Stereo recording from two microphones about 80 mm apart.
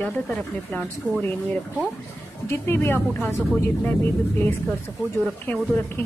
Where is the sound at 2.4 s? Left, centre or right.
Left.